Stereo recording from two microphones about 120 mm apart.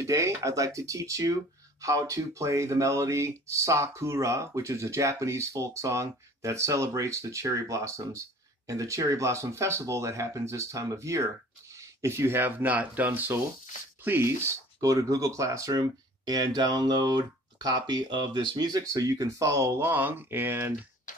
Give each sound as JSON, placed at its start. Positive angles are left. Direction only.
{"t": 0.0, "sound": "speech", "side_deg": -25}